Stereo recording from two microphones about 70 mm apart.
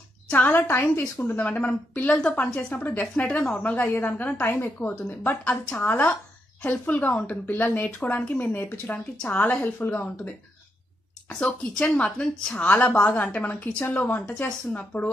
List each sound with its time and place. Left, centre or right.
0.3 s a woman's voice: left